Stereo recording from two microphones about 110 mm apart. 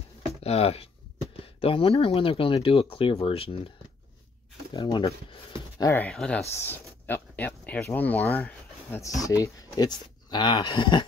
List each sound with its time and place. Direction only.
0.4 s speech: 65° left (ahead or behind)
1.4 s speech: 55° left (ahead or behind)
4.7 s speech: 45° left (ahead or behind)
5.8 s speech: 25° left (ahead or behind)
6.0 s speech: 10° left (ahead or behind)
6.5 s a sound: 20° left (ahead or behind)
7.8 s speech: 15° left (ahead or behind)
9.0 s speech: 30° left (ahead or behind)